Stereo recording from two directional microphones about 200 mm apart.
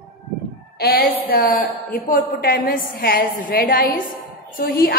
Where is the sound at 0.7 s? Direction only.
50° left (ahead or behind).